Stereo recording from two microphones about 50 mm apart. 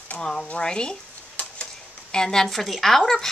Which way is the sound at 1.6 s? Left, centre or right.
Centre.